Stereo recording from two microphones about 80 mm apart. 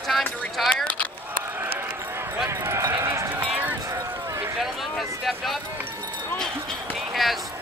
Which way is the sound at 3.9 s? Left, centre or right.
Right.